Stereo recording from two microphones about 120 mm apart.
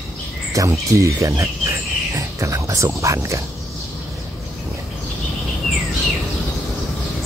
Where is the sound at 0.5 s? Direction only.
25° right (ahead or behind).